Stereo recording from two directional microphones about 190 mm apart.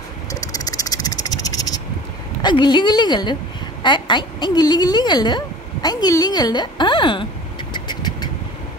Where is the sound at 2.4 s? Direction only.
25° left (ahead or behind).